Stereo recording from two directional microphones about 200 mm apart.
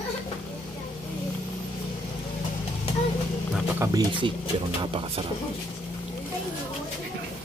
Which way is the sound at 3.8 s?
20° right (ahead or behind).